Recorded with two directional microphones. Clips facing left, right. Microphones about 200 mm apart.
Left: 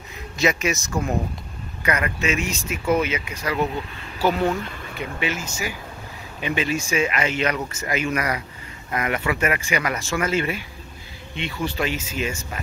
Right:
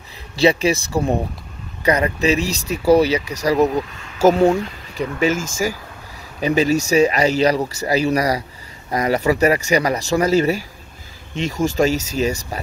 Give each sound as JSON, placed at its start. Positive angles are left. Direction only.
{"t": 0.4, "sound": "speech", "side_deg": -30}
{"t": 6.4, "sound": "speech", "side_deg": -40}